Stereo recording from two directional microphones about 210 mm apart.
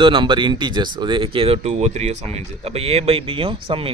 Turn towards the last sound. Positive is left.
turn(degrees=-25)  # may be behind; listen again after turning